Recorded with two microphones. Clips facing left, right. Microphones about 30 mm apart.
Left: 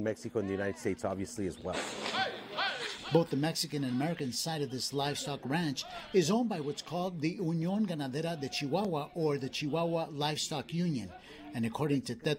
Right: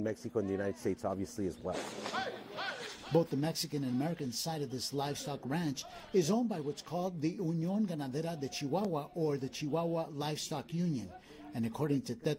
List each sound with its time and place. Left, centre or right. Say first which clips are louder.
0.1 s speech: left 1 dB; left
0.8 s speech: even; left
1.4 s a man's voice: left 3 dB; left
9.7 s a man's voice: left 2 dB; left